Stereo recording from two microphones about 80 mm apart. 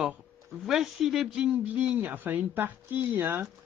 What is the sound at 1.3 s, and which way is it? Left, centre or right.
A woman's voice, centre.